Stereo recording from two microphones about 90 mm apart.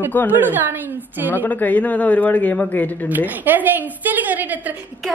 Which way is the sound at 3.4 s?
20° right (ahead or behind).